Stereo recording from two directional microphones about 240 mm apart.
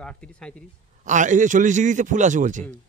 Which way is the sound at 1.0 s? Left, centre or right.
Right.